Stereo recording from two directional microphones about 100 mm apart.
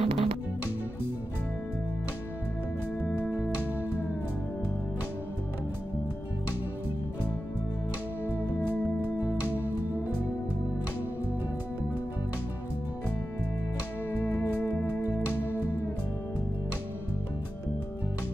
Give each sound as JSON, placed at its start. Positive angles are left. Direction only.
{"t": 0.0, "sound": "music", "side_deg": -75}
{"t": 3.0, "sound": "music", "side_deg": 15}
{"t": 8.4, "sound": "music", "side_deg": 20}
{"t": 14.4, "sound": "music", "side_deg": 20}